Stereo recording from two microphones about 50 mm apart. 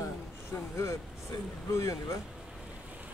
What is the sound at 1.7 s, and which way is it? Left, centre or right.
Speech, left.